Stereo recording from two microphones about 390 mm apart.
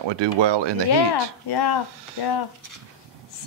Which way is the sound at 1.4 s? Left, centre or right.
Left.